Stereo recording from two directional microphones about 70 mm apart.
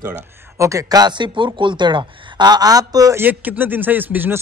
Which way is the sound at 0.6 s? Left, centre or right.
Right.